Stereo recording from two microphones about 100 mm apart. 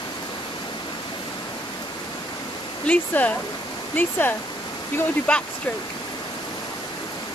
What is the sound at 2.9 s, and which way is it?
Speech, 15° left (ahead or behind).